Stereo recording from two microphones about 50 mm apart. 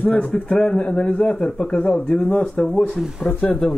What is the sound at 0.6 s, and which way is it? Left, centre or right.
A man's voice, left.